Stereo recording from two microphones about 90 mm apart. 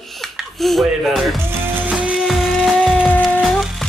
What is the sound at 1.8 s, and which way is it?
Music, 15° right (ahead or behind).